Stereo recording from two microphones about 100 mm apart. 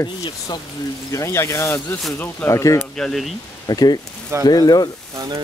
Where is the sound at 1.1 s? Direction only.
30° left (ahead or behind).